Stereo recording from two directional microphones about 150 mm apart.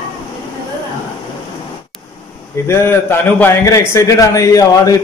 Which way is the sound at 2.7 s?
15° left (ahead or behind).